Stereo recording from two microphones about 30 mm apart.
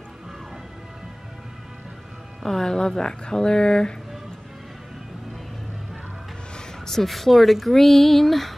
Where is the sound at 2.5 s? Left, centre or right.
Left.